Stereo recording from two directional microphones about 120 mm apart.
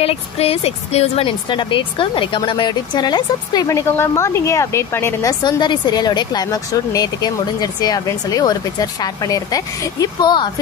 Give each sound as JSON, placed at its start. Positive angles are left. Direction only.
{"t": 0.0, "sound": "a woman's voice", "side_deg": 55}
{"t": 5.4, "sound": "a woman's voice", "side_deg": 40}